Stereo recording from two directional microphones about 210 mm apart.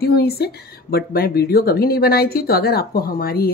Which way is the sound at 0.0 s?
50° left (ahead or behind).